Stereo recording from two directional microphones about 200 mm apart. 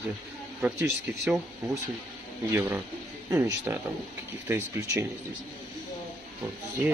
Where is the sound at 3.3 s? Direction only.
15° right (ahead or behind).